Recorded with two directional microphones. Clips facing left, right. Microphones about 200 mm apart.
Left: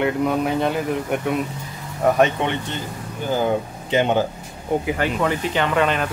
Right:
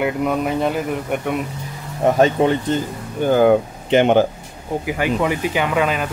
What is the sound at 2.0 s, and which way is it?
Speech, 30° right (ahead or behind).